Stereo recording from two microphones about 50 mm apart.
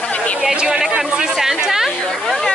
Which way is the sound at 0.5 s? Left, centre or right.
Centre.